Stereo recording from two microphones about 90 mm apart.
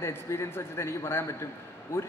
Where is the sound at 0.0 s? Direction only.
30° left (ahead or behind).